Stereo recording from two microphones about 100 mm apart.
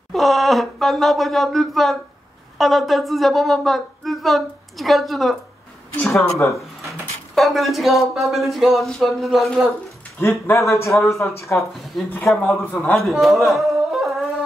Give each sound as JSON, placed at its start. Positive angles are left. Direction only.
{"t": 0.1, "sound": "a woman's voice", "side_deg": 0}
{"t": 6.5, "sound": "speech", "side_deg": 0}
{"t": 10.2, "sound": "a man's voice", "side_deg": 25}
{"t": 11.9, "sound": "a woman's voice", "side_deg": 5}